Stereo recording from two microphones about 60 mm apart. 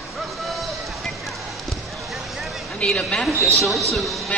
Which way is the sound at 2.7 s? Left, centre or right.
Centre.